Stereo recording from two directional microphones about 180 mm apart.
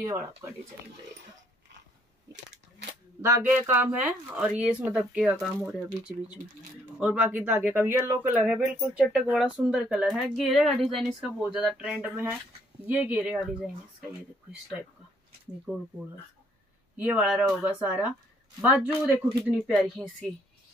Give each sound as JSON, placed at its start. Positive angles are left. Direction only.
{"t": 0.0, "sound": "speech", "side_deg": -15}
{"t": 2.3, "sound": "a sound", "side_deg": -75}
{"t": 3.2, "sound": "speech", "side_deg": -15}
{"t": 7.0, "sound": "speech", "side_deg": -5}
{"t": 15.6, "sound": "speech", "side_deg": -5}
{"t": 19.7, "sound": "speech", "side_deg": 5}